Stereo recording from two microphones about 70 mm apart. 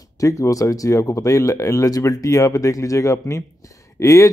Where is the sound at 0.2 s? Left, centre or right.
Left.